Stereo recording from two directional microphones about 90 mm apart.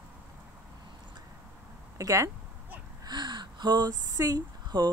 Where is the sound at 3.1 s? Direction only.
55° right (ahead or behind).